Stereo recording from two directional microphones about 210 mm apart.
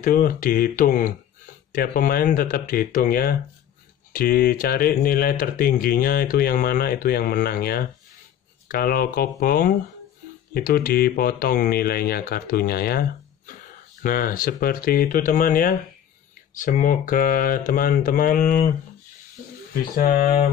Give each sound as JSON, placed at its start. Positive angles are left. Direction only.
{"t": 0.0, "sound": "speech", "side_deg": 40}
{"t": 14.0, "sound": "speech", "side_deg": 40}
{"t": 19.7, "sound": "speech", "side_deg": 45}